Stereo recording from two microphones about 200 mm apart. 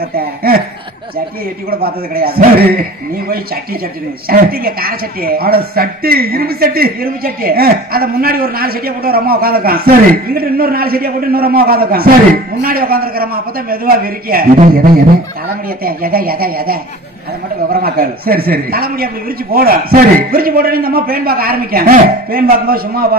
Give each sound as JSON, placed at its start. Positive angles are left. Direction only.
{"t": 1.7, "sound": "a woman's voice", "side_deg": -50}
{"t": 4.3, "sound": "a woman's voice", "side_deg": -50}
{"t": 17.8, "sound": "a woman's voice", "side_deg": -50}